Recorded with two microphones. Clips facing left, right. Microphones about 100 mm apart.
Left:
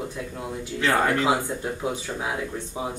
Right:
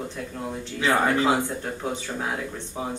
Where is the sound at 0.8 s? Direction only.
15° right (ahead or behind).